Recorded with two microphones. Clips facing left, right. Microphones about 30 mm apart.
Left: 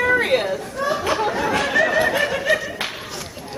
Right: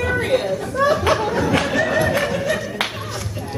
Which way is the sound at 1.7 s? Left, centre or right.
Centre.